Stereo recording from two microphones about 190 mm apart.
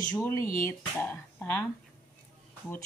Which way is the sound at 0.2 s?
15° left (ahead or behind).